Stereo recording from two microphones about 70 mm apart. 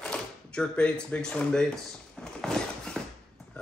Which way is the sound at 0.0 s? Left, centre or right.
Centre.